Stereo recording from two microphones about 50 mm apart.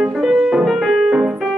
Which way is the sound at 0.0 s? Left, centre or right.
Centre.